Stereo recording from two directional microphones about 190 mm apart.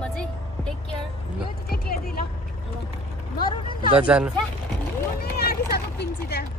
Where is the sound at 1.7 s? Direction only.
50° left (ahead or behind).